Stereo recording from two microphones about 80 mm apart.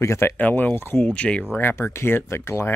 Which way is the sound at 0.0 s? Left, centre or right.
Left.